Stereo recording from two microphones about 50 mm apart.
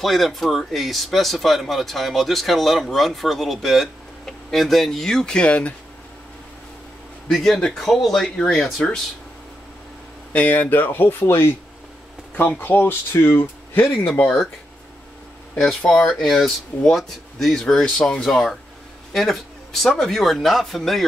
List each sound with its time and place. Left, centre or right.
0.0 s speech: centre; by 5.8 s left
7.2 s speech: centre
10.3 s speech: left
15.9 s speech: centre
16.3 s speech: centre